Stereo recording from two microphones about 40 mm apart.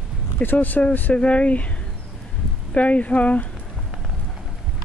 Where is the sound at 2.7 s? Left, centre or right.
Left.